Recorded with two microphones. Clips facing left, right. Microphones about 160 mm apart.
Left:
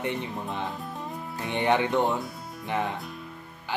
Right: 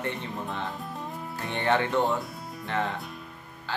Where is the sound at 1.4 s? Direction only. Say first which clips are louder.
Left 2 dB; 15° left (ahead or behind).